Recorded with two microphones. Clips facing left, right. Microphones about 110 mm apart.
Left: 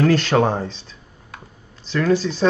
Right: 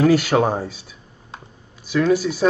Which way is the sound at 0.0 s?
10° right (ahead or behind).